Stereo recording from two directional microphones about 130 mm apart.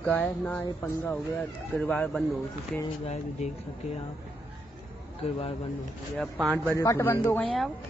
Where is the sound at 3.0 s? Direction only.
55° left (ahead or behind).